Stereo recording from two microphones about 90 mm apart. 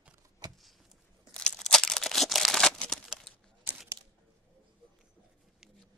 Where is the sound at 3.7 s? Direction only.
20° right (ahead or behind).